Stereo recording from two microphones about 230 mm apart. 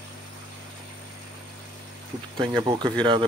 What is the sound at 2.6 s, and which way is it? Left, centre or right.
Speech, right.